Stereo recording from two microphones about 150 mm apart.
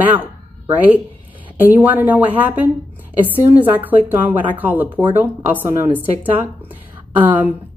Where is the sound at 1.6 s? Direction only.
10° right (ahead or behind).